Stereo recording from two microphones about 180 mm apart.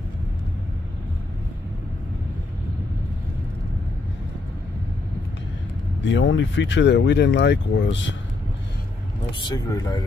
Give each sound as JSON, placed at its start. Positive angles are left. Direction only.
{"t": 6.0, "sound": "speech", "side_deg": 90}
{"t": 9.5, "sound": "speech", "side_deg": 25}